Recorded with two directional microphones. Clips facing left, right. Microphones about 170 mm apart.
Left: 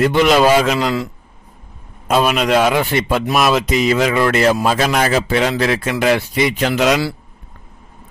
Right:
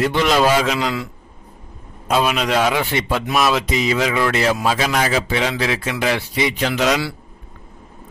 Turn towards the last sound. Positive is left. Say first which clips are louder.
# left 3 dB
turn(degrees=50)  # may be behind; listen again after turning